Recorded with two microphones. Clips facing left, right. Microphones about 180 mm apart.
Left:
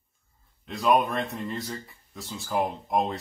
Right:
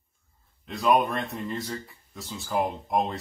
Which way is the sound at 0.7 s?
Centre (ahead or behind).